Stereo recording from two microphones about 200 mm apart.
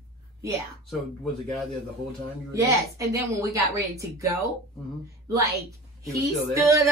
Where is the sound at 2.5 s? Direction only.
15° right (ahead or behind).